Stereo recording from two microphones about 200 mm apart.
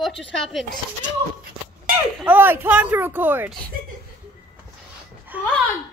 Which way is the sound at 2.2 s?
10° right (ahead or behind).